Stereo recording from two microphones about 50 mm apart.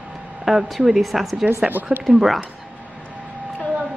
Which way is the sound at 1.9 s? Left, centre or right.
Centre.